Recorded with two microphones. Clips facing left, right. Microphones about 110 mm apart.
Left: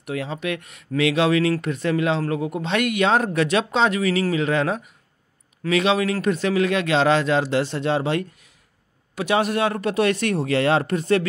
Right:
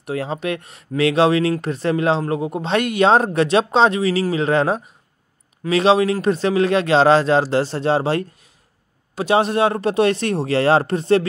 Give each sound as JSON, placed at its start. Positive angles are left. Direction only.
{"t": 0.0, "sound": "speech", "side_deg": -35}